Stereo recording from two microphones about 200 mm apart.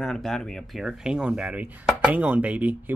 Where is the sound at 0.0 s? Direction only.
5° left (ahead or behind).